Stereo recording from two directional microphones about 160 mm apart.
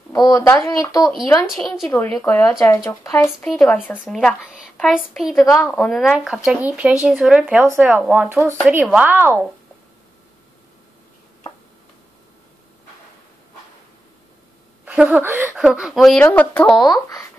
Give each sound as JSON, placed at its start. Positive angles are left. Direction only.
{"t": 0.1, "sound": "speech", "side_deg": 20}
{"t": 1.5, "sound": "a woman's voice", "side_deg": 0}
{"t": 2.2, "sound": "speech", "side_deg": 10}
{"t": 3.2, "sound": "speech", "side_deg": 5}
{"t": 4.0, "sound": "a woman's voice", "side_deg": 0}
{"t": 14.9, "sound": "a woman's voice", "side_deg": -10}
{"t": 16.7, "sound": "speech", "side_deg": 25}